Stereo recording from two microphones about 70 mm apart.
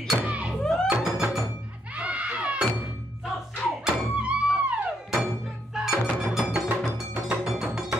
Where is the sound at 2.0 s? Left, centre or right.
Centre.